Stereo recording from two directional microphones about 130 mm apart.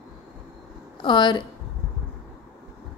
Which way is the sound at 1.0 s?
35° left (ahead or behind).